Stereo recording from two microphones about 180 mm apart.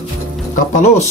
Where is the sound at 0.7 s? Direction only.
45° left (ahead or behind).